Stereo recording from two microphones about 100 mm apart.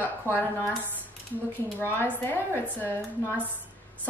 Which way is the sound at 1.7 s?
20° left (ahead or behind).